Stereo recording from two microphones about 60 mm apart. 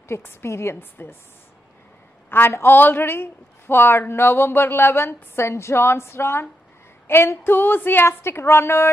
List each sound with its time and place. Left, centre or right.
0.2 s a woman's voice: left
2.2 s a woman's voice: left